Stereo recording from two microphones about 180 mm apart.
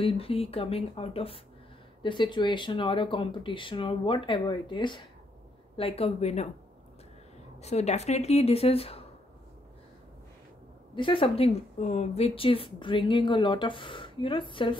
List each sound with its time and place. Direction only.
0.0 s a woman's voice: 30° left (ahead or behind)
7.6 s speech: 35° left (ahead or behind)
11.0 s a woman's voice: 30° left (ahead or behind)